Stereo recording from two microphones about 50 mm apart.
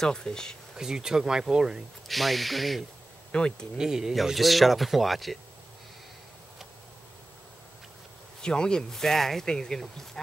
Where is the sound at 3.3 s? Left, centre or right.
Centre.